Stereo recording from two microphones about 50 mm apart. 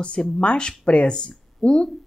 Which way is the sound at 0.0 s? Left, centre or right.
Left.